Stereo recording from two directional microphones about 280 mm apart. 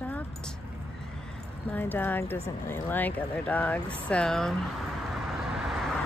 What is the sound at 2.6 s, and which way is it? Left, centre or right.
Speech, centre.